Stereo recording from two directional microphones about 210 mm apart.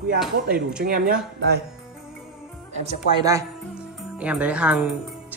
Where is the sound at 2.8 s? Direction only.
30° right (ahead or behind).